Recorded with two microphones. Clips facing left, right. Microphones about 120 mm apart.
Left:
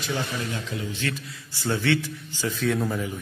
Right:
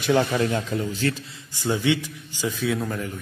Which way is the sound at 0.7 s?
40° right (ahead or behind).